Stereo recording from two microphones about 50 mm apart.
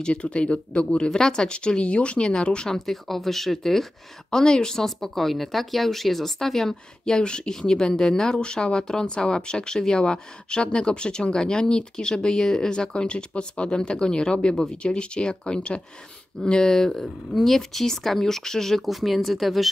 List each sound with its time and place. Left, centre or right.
0.0 s speech: centre